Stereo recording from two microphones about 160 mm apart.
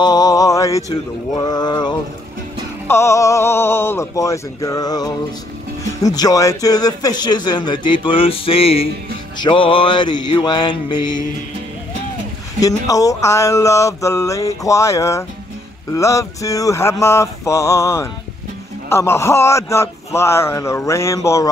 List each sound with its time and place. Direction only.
0.0 s a sound: 25° left (ahead or behind)
1.4 s a man's voice: 25° left (ahead or behind)
12.5 s a man's voice: 20° left (ahead or behind)